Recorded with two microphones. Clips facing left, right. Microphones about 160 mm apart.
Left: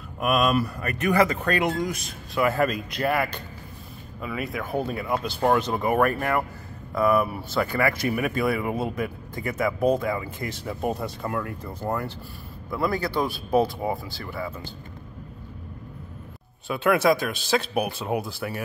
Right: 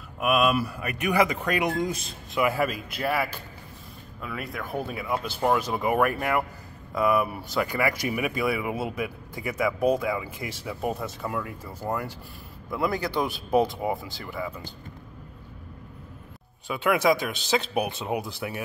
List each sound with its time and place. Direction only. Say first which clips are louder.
0.2 s speech: left 1 dB; 5° right (ahead or behind)
1.8 s speech: even; 25° right (ahead or behind)
2.3 s speech: left 2 dB; 10° right (ahead or behind)
16.6 s speech: left 2 dB; 15° right (ahead or behind)